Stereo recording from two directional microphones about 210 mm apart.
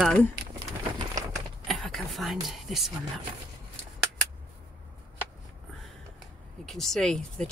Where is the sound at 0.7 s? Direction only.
15° right (ahead or behind).